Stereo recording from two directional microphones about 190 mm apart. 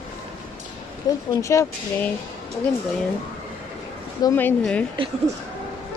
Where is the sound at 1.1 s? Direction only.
20° left (ahead or behind).